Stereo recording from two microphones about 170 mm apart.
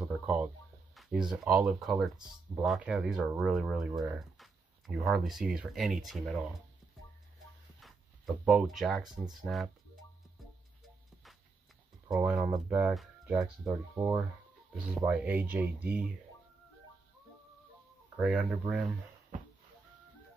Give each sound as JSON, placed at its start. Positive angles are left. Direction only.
{"t": 0.0, "sound": "chicken", "side_deg": -5}
{"t": 0.9, "sound": "speech", "side_deg": 0}
{"t": 5.0, "sound": "speech", "side_deg": 0}
{"t": 7.8, "sound": "speech", "side_deg": 0}
{"t": 12.2, "sound": "speech", "side_deg": -10}
{"t": 18.1, "sound": "speech", "side_deg": -5}